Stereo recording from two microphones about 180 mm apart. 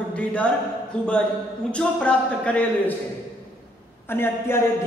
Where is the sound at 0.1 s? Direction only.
5° left (ahead or behind).